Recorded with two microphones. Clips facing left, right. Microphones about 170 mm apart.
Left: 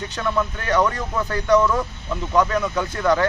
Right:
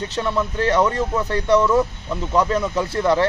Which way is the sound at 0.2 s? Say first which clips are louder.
Right 3 dB; 30° right (ahead or behind).